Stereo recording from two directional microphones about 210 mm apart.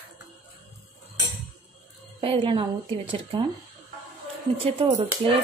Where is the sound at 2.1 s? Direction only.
25° right (ahead or behind).